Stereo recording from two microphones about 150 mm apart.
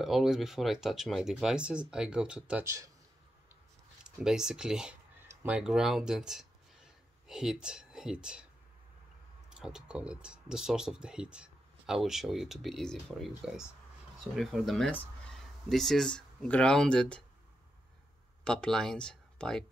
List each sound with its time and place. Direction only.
0.0 s speech: centre (ahead or behind)
2.6 s speech: 20° right (ahead or behind)
4.0 s speech: 5° right (ahead or behind)
9.5 s speech: 5° right (ahead or behind)
18.4 s speech: 5° left (ahead or behind)